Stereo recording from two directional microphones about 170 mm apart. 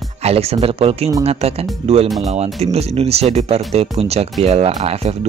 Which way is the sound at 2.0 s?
Centre (ahead or behind).